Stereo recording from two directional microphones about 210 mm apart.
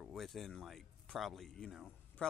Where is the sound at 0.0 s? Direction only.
Centre (ahead or behind).